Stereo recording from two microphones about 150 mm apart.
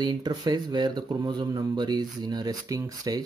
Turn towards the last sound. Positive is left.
turn(degrees=-25)  # may be behind; listen again after turning